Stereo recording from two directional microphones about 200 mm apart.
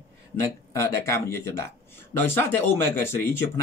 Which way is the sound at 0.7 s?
15° left (ahead or behind).